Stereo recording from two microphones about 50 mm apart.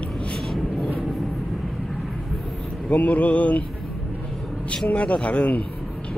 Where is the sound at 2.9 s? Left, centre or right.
Left.